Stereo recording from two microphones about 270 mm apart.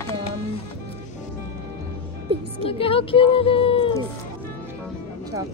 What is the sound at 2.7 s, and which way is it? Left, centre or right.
Speech, centre.